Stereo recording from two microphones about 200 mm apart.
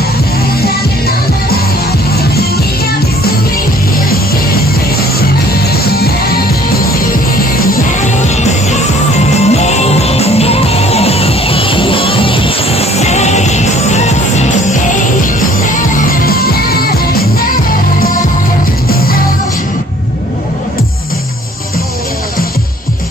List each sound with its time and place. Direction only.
0.6 s music: 50° left (ahead or behind)
5.7 s music: 50° left (ahead or behind)
7.7 s music: 35° left (ahead or behind)
15.7 s music: 45° left (ahead or behind)